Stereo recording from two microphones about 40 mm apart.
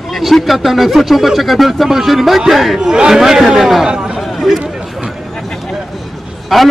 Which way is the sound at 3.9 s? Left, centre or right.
Right.